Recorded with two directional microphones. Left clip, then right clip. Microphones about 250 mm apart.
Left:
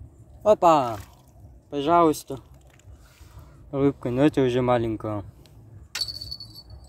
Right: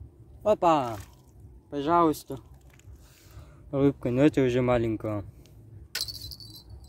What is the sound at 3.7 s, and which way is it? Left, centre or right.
Speech, centre.